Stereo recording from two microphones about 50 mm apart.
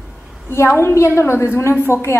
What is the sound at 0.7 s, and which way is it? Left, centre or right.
A woman's voice, left.